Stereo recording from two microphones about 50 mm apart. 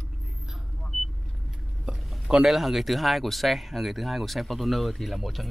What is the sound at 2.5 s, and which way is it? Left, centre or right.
Speech, centre.